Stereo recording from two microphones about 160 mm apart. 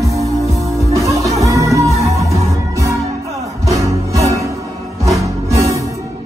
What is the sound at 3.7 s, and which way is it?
Music, 20° right (ahead or behind).